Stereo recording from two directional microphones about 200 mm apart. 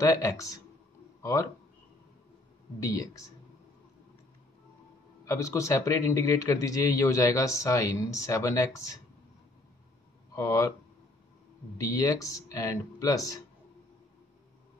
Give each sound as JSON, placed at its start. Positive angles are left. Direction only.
{"t": 0.0, "sound": "speech", "side_deg": 15}
{"t": 2.8, "sound": "speech", "side_deg": 15}
{"t": 5.2, "sound": "speech", "side_deg": 15}
{"t": 10.3, "sound": "speech", "side_deg": 15}
{"t": 11.8, "sound": "speech", "side_deg": 15}